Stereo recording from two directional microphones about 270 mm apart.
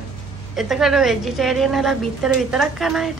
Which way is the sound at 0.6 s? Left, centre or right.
Centre.